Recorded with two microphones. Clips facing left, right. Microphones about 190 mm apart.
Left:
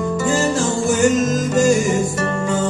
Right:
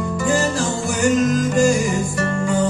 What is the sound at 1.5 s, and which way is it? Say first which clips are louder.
Music: left 5 dB; 20° left (ahead or behind).